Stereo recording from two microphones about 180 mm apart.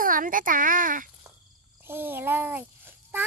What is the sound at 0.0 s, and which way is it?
A child's voice, 50° right (ahead or behind).